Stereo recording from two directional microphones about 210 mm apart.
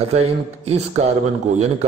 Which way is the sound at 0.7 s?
30° right (ahead or behind).